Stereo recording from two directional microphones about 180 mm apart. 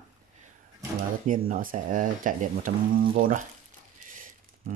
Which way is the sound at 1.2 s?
50° right (ahead or behind).